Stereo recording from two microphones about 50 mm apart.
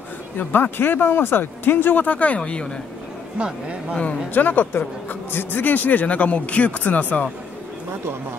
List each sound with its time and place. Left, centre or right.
0.4 s speech: left
4.3 s a man's voice: left